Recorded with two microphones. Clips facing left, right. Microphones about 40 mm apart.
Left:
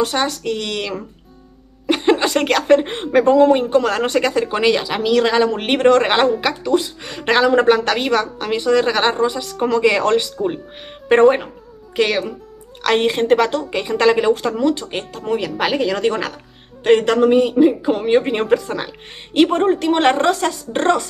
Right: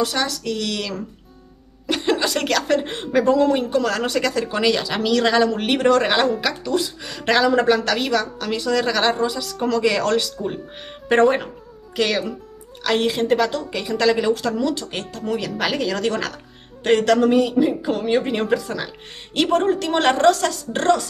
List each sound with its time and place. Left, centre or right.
0.0 s a woman's voice: left
4.8 s speech: centre
5.5 s a woman's voice: left
7.4 s a woman's voice: left
12.8 s a woman's voice: left
19.3 s speech: left